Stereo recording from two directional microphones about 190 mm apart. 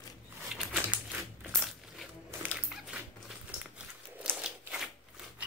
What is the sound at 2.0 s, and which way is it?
Music, 5° right (ahead or behind).